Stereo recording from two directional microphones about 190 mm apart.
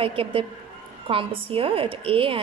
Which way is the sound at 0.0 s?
30° right (ahead or behind).